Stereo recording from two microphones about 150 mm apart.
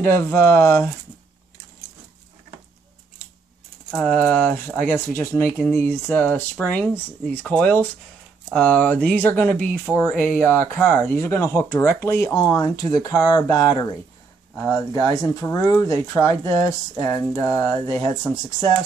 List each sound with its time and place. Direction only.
0.0 s speech: 15° left (ahead or behind)
3.9 s speech: 10° left (ahead or behind)